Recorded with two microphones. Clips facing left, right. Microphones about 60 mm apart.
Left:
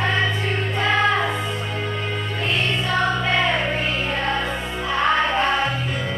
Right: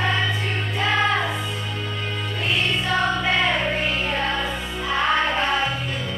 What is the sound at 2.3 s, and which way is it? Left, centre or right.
Music, centre.